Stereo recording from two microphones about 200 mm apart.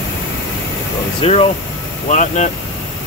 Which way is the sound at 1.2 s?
30° left (ahead or behind).